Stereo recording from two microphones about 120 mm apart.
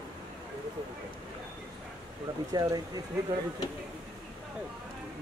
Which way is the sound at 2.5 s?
35° right (ahead or behind).